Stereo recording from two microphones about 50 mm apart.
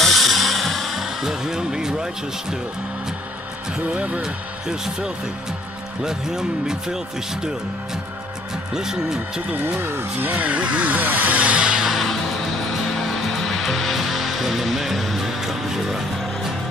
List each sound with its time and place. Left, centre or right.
0.0 s music: centre
3.8 s speech: right
4.2 s speech: centre
8.7 s speech: centre
9.8 s speech: right
10.3 s speech: right
11.6 s music: centre
11.9 s music: centre